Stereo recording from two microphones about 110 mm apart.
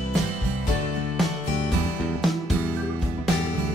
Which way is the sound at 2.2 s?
Centre (ahead or behind).